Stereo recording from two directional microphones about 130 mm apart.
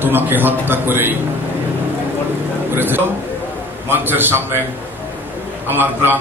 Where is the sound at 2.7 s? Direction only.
15° right (ahead or behind).